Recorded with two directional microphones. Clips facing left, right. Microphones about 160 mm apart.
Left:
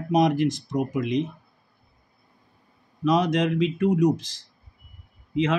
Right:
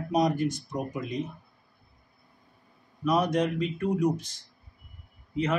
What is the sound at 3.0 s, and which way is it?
Speech, 90° left.